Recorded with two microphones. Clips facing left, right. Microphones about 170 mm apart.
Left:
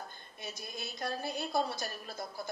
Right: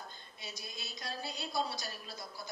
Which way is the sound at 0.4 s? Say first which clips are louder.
Left 5 dB; 50° left (ahead or behind).